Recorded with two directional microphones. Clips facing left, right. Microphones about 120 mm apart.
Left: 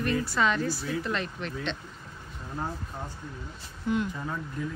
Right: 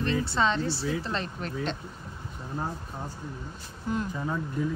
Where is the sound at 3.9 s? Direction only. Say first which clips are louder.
Left 2 dB; 40° right (ahead or behind).